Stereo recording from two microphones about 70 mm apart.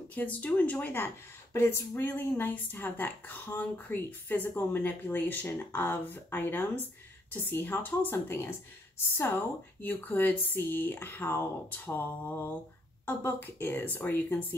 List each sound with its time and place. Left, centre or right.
0.1 s a woman's voice: left
9.8 s a woman's voice: left